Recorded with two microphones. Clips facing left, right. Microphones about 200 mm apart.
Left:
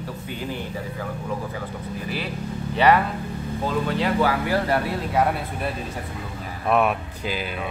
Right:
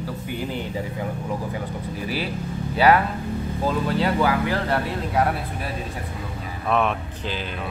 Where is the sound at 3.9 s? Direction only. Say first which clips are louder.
Even; centre (ahead or behind).